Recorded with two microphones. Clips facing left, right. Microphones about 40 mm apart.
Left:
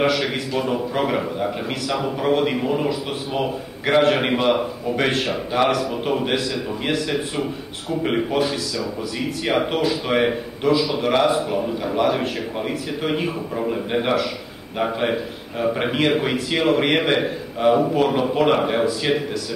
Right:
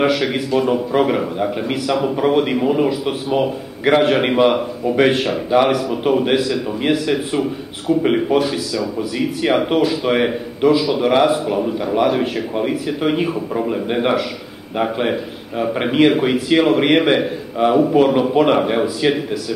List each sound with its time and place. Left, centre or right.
0.0 s a man's voice: centre